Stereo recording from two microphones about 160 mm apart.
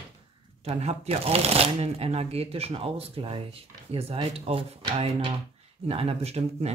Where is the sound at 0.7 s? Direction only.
40° right (ahead or behind).